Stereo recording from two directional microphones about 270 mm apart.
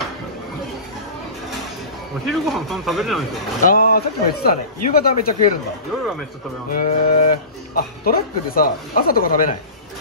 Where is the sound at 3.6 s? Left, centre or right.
Left.